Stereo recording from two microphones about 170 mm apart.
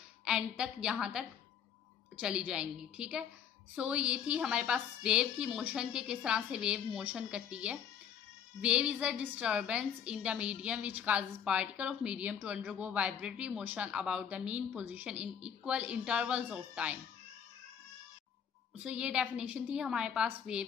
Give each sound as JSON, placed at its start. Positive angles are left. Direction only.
{"t": 0.2, "sound": "a woman's voice", "side_deg": -5}
{"t": 18.8, "sound": "a woman's voice", "side_deg": -5}